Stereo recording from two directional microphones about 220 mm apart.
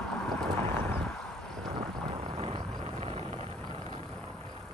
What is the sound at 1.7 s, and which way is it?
Vehicle, 20° right (ahead or behind).